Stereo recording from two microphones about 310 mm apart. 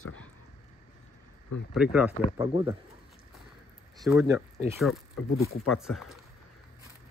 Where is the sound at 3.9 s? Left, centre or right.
Centre.